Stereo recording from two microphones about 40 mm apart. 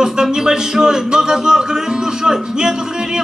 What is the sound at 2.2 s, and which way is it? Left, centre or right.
Speech, centre.